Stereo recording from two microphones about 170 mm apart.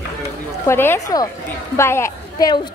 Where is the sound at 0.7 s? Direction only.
15° left (ahead or behind).